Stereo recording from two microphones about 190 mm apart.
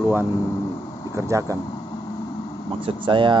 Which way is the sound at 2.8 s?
25° right (ahead or behind).